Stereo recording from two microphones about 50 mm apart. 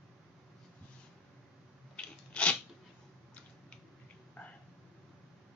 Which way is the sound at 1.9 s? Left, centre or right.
Left.